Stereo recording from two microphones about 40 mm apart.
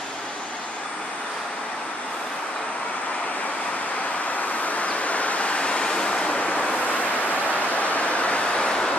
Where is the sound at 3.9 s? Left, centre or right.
Left.